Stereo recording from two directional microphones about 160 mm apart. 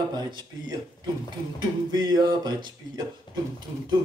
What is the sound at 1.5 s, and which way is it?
Speech, 25° right (ahead or behind).